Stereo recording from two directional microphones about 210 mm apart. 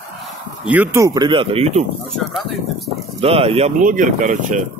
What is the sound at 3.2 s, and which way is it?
Speech, 30° right (ahead or behind).